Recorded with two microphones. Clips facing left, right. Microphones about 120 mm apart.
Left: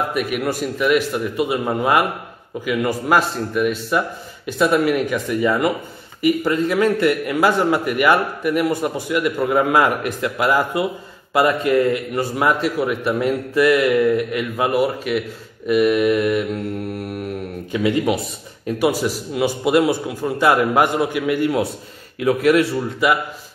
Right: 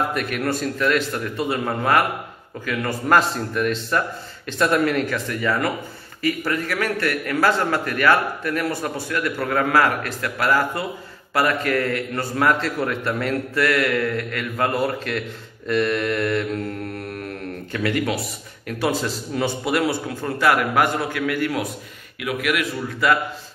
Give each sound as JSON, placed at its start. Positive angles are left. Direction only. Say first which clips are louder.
{"t": 0.1, "sound": "a man's voice", "louder": "left 2 dB", "side_deg": 10}
{"t": 22.2, "sound": "a man's voice", "louder": "left 8 dB", "side_deg": 30}
{"t": 23.0, "sound": "a man's voice", "louder": "left 1 dB", "side_deg": 20}